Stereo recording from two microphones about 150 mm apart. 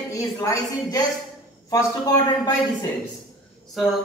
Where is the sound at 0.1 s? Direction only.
20° left (ahead or behind).